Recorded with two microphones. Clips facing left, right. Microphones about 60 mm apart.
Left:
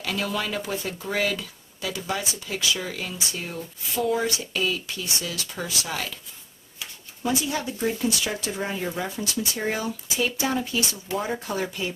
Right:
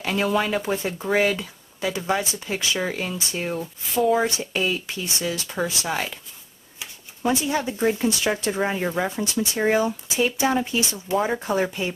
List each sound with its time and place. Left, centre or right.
0.0 s speech: right
7.2 s speech: right